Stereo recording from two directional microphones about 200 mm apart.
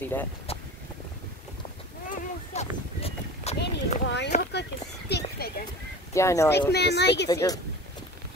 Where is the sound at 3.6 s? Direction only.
60° left (ahead or behind).